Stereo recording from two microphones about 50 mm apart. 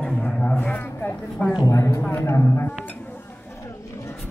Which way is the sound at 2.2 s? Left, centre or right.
Left.